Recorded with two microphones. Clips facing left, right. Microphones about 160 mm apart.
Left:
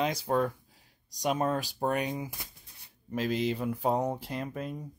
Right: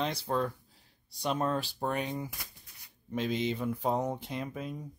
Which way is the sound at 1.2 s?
10° left (ahead or behind).